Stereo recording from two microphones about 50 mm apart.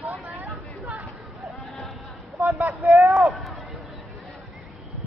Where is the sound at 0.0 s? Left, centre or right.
Right.